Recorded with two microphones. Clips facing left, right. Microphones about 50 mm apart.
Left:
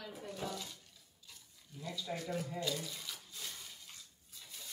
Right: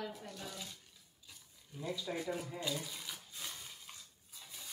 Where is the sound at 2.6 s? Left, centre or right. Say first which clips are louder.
Left 1 dB; centre.